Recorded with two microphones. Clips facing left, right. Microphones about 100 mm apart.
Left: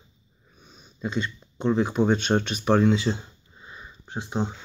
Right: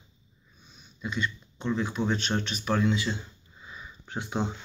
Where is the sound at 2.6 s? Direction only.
35° left (ahead or behind).